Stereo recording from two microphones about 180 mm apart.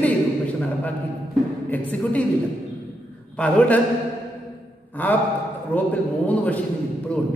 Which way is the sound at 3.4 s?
5° left (ahead or behind).